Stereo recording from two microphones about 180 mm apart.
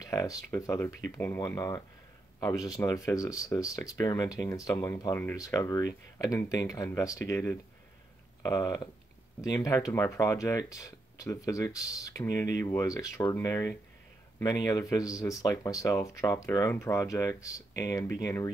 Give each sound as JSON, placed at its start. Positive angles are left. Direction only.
{"t": 0.0, "sound": "speech", "side_deg": 20}